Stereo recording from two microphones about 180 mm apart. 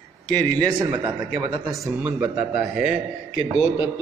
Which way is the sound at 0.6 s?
25° right (ahead or behind).